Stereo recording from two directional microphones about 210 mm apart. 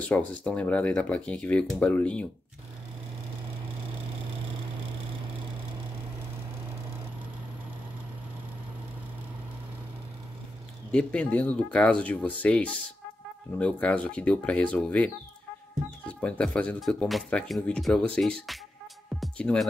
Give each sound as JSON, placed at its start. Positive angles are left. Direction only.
{"t": 0.0, "sound": "speech", "side_deg": 5}
{"t": 10.9, "sound": "speech", "side_deg": 5}
{"t": 16.2, "sound": "speech", "side_deg": 5}
{"t": 19.1, "sound": "music", "side_deg": 5}